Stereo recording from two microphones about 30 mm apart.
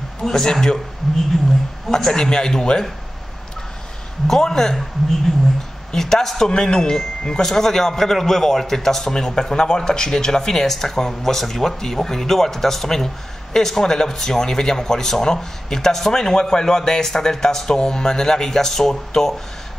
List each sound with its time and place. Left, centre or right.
0.2 s a man's voice: centre
4.3 s a man's voice: centre
5.9 s a man's voice: centre